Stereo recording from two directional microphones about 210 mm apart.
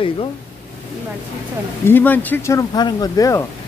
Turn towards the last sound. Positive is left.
turn(degrees=15)  # may be behind; listen again after turning